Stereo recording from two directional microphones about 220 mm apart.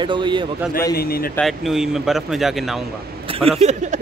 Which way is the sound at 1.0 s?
45° left (ahead or behind).